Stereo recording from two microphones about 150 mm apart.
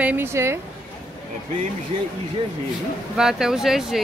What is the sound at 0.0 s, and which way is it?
Speech, 15° right (ahead or behind).